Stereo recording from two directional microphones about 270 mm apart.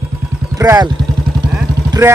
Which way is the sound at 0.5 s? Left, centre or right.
Centre.